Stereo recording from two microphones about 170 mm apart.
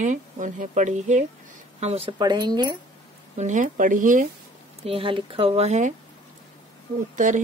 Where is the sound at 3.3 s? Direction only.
45° right (ahead or behind).